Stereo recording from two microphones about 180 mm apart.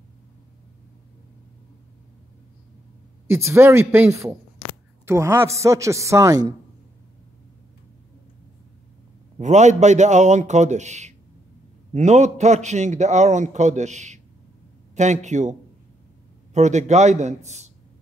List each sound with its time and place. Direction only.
3.3 s a man's voice: 15° right (ahead or behind)
9.4 s a man's voice: 40° right (ahead or behind)
16.5 s a man's voice: 40° right (ahead or behind)